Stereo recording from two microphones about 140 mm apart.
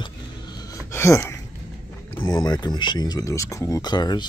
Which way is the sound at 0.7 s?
20° left (ahead or behind).